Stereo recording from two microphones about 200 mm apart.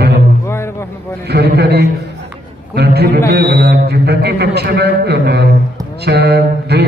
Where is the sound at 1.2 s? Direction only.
55° right (ahead or behind).